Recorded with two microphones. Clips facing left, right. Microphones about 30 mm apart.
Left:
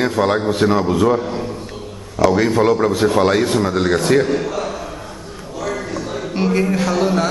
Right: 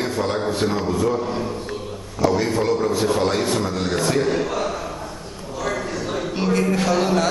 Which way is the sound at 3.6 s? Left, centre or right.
Left.